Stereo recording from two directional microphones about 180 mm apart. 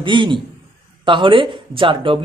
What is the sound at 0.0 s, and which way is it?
Speech, 25° right (ahead or behind).